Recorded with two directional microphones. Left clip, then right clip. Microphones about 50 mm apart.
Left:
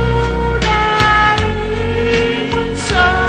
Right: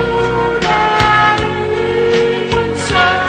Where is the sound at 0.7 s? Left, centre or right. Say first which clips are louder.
Right 1 dB; left.